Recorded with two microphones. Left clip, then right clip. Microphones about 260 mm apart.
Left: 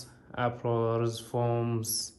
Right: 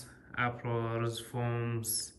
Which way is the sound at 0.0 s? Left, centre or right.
Centre.